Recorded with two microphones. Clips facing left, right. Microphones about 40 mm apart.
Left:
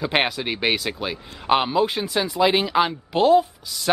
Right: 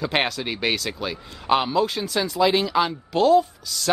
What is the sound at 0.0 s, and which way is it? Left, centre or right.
A man's voice, centre.